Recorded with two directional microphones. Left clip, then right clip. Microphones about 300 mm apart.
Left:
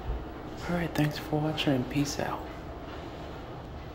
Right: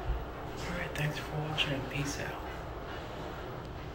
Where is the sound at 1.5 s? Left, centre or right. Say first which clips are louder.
Left 4 dB; centre.